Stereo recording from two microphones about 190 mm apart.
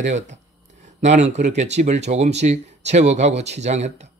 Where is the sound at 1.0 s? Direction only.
35° right (ahead or behind).